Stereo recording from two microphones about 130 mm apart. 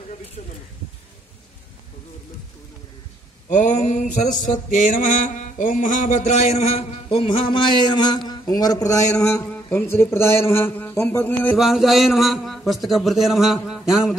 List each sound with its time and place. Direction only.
3.4 s mantra: 75° left (ahead or behind); by 9.4 s 25° left (ahead or behind)
9.5 s a man's voice: 15° left (ahead or behind)
11.5 s a man's voice: centre (ahead or behind)